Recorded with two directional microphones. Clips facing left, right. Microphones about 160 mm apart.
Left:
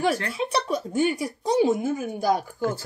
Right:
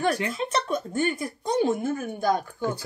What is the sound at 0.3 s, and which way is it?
A woman's voice, 10° left (ahead or behind).